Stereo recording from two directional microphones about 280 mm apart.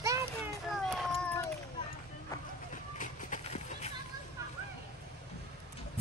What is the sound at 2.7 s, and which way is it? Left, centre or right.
Vehicle, left.